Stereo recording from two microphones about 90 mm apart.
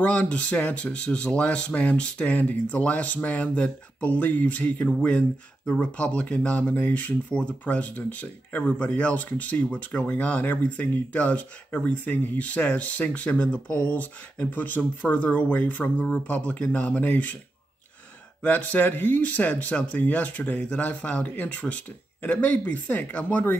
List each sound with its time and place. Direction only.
0.0 s speech: 15° left (ahead or behind)
18.4 s speech: 15° left (ahead or behind)